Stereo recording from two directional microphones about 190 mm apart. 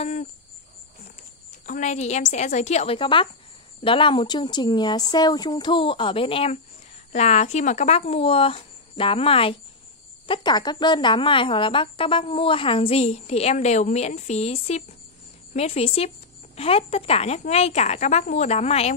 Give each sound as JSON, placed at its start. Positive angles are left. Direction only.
{"t": 0.0, "sound": "cricket", "side_deg": 35}
{"t": 1.5, "sound": "speech", "side_deg": 40}